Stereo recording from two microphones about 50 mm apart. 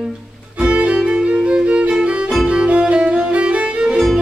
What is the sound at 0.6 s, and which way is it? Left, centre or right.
Music, right.